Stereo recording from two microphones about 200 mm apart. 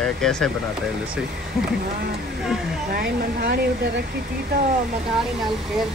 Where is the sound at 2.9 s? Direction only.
50° right (ahead or behind).